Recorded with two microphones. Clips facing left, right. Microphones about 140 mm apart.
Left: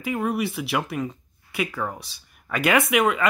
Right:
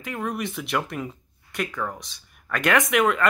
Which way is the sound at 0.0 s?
10° left (ahead or behind).